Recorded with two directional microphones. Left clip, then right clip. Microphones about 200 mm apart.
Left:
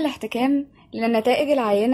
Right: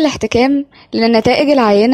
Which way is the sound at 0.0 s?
40° right (ahead or behind).